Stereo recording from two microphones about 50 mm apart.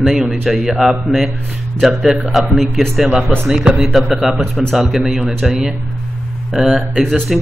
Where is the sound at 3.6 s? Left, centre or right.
Centre.